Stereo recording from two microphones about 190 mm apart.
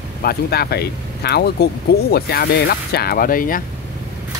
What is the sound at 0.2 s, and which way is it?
Speech, 55° left (ahead or behind).